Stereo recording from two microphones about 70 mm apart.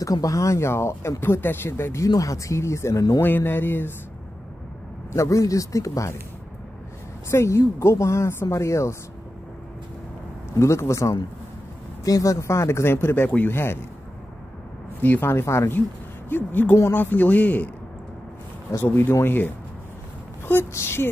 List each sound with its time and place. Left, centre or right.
0.0 s speech: left
2.0 s speech: left
3.2 s speech: left
5.1 s speech: left
7.2 s speech: left
10.6 s speech: left
15.0 s speech: left
16.3 s a man's voice: left
18.9 s speech: left
20.7 s speech: left